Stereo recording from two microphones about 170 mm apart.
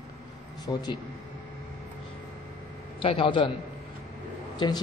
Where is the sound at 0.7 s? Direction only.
25° left (ahead or behind).